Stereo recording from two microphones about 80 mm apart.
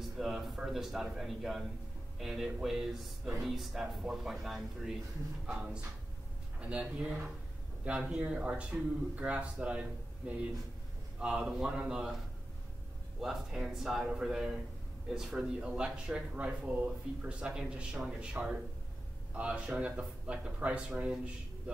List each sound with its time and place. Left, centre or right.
0.2 s a sound: centre
0.6 s speech: centre
6.6 s speech: centre
13.2 s speech: centre